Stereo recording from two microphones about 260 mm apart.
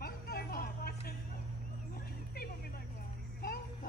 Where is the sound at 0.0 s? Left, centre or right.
Left.